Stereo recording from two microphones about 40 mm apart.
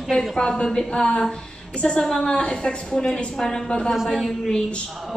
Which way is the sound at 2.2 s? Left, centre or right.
Left.